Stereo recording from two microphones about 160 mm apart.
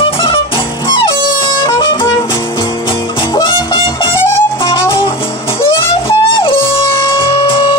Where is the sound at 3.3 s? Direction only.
30° left (ahead or behind).